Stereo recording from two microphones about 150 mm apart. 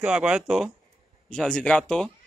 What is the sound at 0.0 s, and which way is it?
Speech, 5° right (ahead or behind).